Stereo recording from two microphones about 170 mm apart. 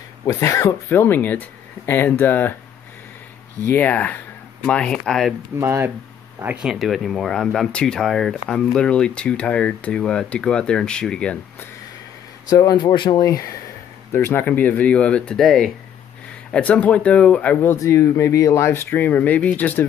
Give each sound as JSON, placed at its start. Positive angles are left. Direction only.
{"t": 0.2, "sound": "speech", "side_deg": 20}
{"t": 3.6, "sound": "speech", "side_deg": 10}
{"t": 5.6, "sound": "speech", "side_deg": -15}
{"t": 12.4, "sound": "speech", "side_deg": 20}